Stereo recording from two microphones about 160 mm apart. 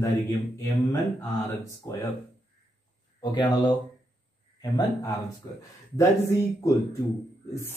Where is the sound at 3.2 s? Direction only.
25° left (ahead or behind).